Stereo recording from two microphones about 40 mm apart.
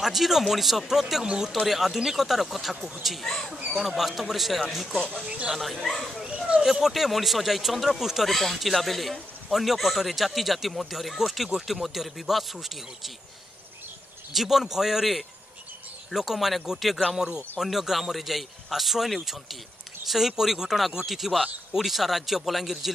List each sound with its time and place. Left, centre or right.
0.0 s a man's voice: centre
1.2 s speech: right
1.7 s a man's voice: centre
5.2 s speech: right
5.6 s a man's voice: centre
6.2 s a sound: right
6.6 s a man's voice: centre
8.3 s a man's voice: centre
14.3 s a man's voice: centre